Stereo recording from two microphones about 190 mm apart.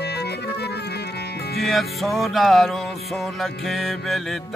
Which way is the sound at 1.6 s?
Centre (ahead or behind).